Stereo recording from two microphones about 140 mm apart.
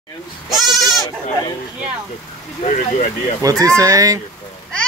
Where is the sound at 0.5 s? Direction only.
Centre (ahead or behind).